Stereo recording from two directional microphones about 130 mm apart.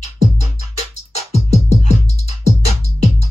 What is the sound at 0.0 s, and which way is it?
Music, 60° left (ahead or behind).